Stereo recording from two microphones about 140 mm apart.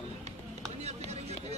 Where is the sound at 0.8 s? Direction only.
50° right (ahead or behind).